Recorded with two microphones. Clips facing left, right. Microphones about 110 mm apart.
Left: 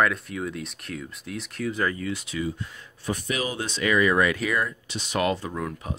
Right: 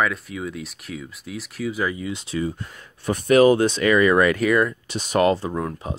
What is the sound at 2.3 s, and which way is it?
Speech, 40° right (ahead or behind).